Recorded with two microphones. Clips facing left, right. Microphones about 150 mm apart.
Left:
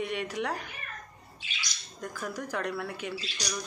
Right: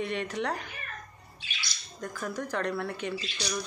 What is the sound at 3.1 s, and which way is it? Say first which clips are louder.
Speech: right 2 dB; 35° left (ahead or behind).